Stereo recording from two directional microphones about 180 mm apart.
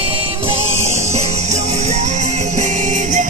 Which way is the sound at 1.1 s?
35° right (ahead or behind).